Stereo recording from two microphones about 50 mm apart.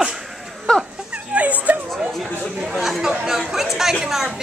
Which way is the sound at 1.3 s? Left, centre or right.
Right.